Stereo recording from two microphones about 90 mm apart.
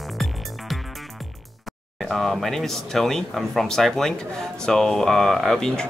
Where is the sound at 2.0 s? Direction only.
Centre (ahead or behind).